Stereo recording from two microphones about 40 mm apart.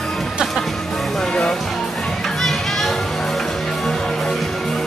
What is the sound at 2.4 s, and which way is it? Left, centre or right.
Children playing, centre.